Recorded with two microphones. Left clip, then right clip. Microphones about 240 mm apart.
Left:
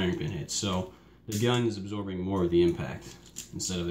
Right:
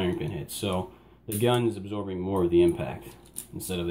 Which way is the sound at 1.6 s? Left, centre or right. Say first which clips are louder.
Right 3 dB; right.